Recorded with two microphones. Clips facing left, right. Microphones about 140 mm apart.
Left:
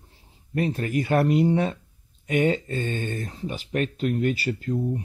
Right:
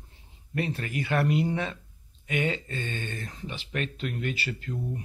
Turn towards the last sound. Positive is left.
turn(degrees=40)  # may be behind; listen again after turning